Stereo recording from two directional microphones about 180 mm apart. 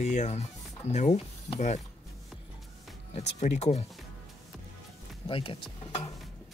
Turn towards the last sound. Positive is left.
turn(degrees=30)  # may be behind; listen again after turning